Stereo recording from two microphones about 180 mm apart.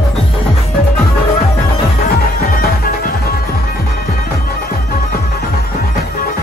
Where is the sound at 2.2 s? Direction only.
55° left (ahead or behind).